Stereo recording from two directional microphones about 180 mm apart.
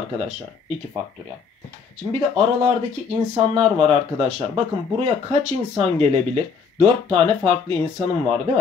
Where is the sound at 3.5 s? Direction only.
35° right (ahead or behind).